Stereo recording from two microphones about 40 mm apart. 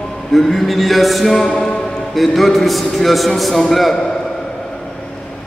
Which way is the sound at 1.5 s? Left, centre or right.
Centre.